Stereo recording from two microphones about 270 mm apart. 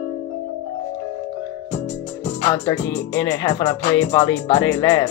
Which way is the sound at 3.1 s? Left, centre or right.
Centre.